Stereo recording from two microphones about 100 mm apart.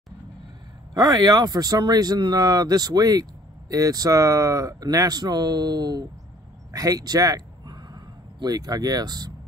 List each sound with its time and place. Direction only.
0.9 s a man's voice: 35° right (ahead or behind)